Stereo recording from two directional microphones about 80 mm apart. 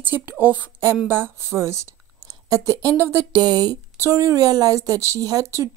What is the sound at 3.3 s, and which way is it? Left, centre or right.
Speech, right.